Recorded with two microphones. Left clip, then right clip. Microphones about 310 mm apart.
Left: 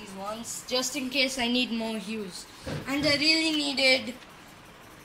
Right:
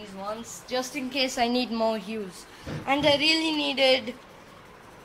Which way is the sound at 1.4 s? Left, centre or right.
Right.